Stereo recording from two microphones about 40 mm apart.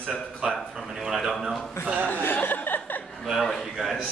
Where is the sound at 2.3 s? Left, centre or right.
Left.